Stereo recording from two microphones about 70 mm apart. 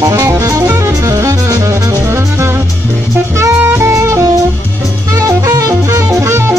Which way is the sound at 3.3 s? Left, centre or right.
Right.